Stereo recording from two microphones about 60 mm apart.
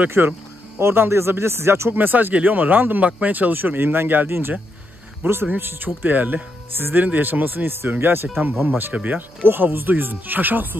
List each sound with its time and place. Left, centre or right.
0.2 s speech: right
0.7 s speech: right